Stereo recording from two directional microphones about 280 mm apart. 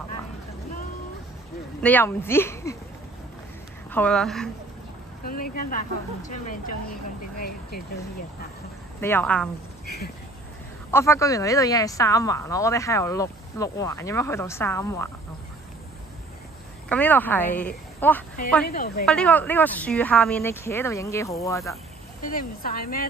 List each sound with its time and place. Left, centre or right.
1.8 s speech: centre
3.9 s a woman's voice: centre
5.2 s speech: left
9.0 s a woman's voice: centre
10.9 s speech: centre
16.9 s a woman's voice: centre
18.7 s speech: left
19.0 s speech: centre
22.3 s speech: left